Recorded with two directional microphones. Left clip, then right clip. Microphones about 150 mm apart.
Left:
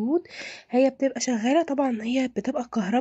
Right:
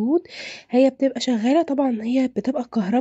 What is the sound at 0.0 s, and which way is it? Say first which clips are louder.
Speech: right 4 dB; 35° right (ahead or behind).